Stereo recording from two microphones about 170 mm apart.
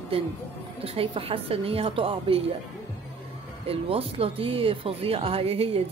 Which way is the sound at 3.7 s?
35° right (ahead or behind).